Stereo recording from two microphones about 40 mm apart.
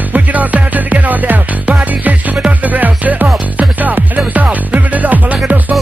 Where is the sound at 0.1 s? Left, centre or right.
Right.